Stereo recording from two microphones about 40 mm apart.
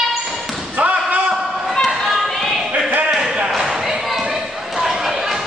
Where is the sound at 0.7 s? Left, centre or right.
Right.